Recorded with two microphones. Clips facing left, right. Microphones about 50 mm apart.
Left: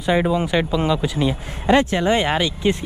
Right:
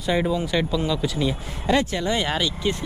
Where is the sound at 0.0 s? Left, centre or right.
Left.